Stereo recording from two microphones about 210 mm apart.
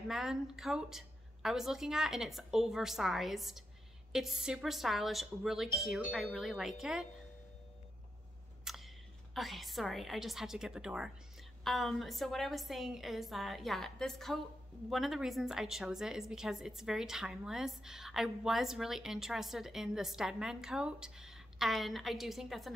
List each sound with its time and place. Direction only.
0.1 s a woman's voice: centre (ahead or behind)
8.6 s a woman's voice: centre (ahead or behind)